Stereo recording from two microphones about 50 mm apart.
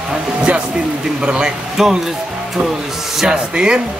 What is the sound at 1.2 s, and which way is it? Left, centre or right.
Speech, centre.